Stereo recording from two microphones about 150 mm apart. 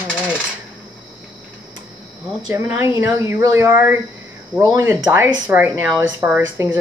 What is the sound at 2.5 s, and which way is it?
Speech, 15° right (ahead or behind).